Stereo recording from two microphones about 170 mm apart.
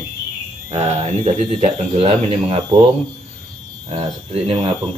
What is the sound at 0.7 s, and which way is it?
Speech, 40° right (ahead or behind).